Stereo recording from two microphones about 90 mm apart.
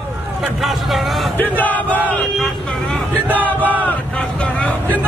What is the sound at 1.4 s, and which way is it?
Battle cry, 20° left (ahead or behind).